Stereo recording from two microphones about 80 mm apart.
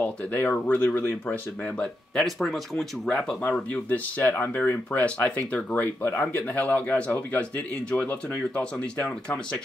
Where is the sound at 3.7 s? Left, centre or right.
Centre.